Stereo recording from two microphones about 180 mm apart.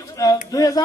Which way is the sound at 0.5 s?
20° left (ahead or behind).